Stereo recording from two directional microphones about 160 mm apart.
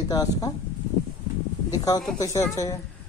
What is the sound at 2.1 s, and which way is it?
Speech, 20° left (ahead or behind).